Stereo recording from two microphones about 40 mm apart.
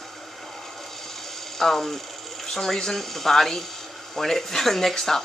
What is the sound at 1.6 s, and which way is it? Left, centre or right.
Speech, centre.